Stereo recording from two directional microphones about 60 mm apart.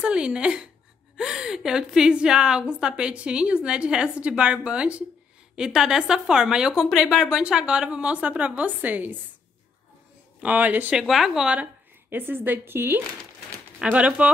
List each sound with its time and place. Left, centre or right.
0.0 s a woman's voice: centre
10.4 s speech: right
11.1 s a woman's voice: centre
11.5 s speech: right
13.8 s speech: right